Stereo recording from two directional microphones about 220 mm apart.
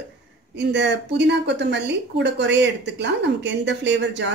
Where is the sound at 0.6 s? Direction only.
50° right (ahead or behind).